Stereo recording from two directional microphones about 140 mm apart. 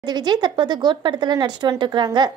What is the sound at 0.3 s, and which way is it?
Speech, 30° right (ahead or behind).